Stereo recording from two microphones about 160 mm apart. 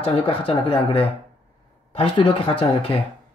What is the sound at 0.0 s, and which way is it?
Speech, 35° left (ahead or behind).